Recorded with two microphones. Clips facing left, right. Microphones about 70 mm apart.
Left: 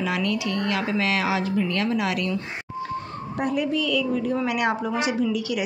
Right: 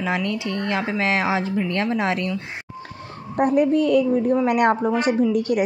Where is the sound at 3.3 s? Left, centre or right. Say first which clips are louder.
Right 7 dB; right.